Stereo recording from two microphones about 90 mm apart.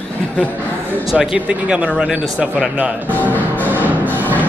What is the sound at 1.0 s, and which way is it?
Speech, 10° right (ahead or behind).